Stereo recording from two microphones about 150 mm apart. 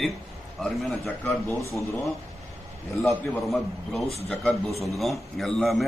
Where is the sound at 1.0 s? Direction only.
15° left (ahead or behind).